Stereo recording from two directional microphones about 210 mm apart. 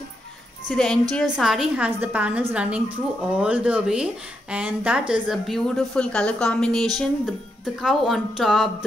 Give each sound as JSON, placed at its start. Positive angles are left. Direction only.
{"t": 0.7, "sound": "speech", "side_deg": 5}